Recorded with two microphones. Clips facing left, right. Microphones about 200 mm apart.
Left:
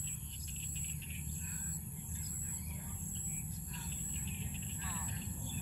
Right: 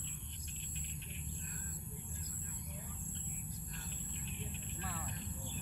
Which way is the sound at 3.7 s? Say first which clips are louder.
Left 2 dB; 60° right (ahead or behind).